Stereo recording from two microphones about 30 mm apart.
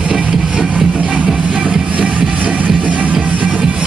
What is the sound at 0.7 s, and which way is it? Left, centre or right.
Music, right.